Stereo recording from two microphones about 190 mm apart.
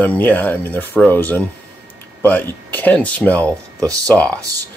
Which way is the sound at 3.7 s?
15° right (ahead or behind).